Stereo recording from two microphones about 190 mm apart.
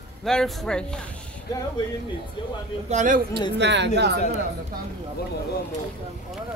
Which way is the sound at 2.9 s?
40° right (ahead or behind).